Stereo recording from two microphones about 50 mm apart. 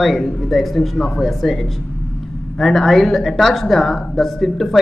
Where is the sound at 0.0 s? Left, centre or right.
Centre.